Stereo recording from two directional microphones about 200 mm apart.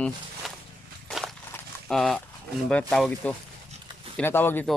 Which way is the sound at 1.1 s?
Centre (ahead or behind).